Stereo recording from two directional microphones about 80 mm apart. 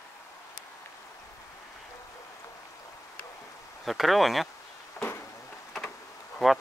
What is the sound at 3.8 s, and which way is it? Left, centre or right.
Speech, centre.